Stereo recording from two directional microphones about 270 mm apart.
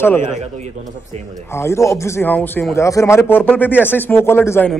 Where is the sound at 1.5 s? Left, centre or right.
Centre.